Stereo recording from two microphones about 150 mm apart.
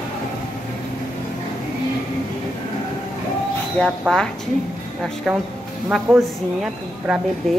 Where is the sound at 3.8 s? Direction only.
10° left (ahead or behind).